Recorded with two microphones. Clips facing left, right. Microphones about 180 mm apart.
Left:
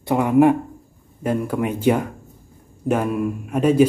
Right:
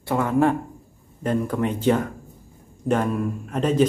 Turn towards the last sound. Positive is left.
turn(degrees=10)  # may be behind; listen again after turning